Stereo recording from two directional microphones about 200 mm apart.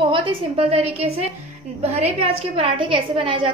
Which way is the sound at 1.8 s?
30° right (ahead or behind).